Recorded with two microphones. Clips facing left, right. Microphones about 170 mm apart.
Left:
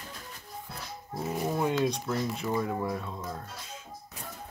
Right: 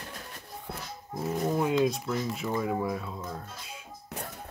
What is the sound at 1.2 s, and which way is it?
Speech, 5° left (ahead or behind).